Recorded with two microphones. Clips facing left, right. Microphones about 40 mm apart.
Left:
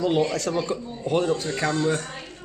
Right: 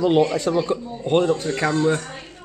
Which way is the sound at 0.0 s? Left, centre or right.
Right.